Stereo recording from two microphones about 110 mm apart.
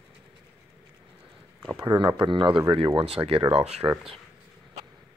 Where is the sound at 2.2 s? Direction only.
50° right (ahead or behind); by 3.8 s 70° right (ahead or behind).